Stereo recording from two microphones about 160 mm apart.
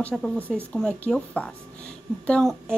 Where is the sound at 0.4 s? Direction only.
10° right (ahead or behind).